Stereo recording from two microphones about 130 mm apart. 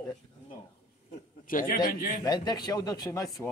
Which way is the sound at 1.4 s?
90° left.